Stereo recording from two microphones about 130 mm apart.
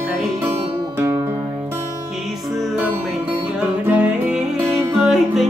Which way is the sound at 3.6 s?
10° right (ahead or behind).